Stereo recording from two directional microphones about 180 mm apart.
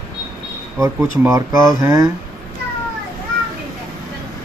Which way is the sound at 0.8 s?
15° right (ahead or behind).